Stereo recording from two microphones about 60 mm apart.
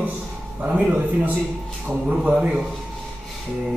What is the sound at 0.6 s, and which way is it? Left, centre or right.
A man's voice, right.